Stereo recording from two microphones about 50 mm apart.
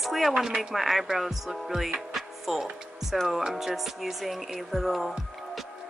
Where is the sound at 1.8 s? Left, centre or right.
Centre.